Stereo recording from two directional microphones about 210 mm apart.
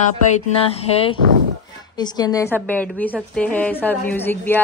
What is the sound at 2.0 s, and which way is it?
A woman's voice, 20° left (ahead or behind).